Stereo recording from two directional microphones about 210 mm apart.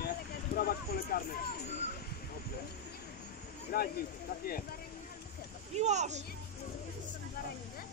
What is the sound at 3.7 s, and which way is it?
Speech, 45° left (ahead or behind).